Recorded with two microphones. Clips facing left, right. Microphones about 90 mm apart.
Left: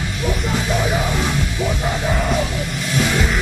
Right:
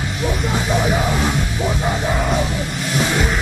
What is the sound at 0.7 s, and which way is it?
Music, 15° right (ahead or behind).